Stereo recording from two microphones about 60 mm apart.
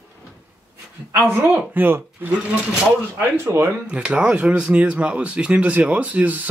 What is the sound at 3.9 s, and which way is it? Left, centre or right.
Speech, centre.